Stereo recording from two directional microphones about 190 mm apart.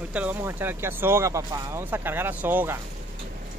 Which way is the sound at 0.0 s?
10° right (ahead or behind).